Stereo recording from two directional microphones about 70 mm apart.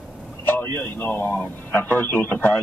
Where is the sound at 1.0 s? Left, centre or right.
Left.